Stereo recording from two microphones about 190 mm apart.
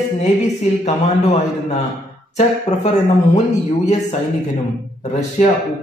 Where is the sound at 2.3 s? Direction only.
35° left (ahead or behind).